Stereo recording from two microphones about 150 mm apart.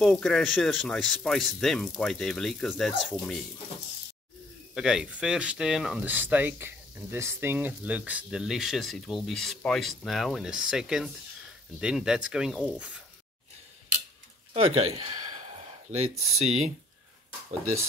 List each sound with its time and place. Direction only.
0.0 s speech: centre (ahead or behind)
4.7 s speech: 5° right (ahead or behind)
14.5 s speech: 40° right (ahead or behind)
16.0 s speech: 45° right (ahead or behind)